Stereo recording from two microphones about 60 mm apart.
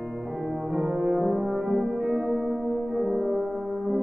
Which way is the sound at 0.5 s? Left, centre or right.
Centre.